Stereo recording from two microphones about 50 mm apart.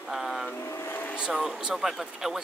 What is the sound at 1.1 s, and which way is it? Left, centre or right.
Speech, centre.